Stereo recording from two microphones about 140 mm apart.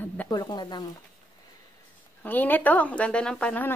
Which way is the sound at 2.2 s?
15° left (ahead or behind).